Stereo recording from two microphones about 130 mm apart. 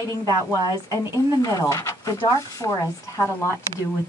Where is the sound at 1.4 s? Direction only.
25° left (ahead or behind).